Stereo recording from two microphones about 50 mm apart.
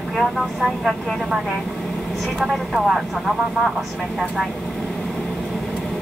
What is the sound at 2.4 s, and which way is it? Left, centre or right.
Speech, centre.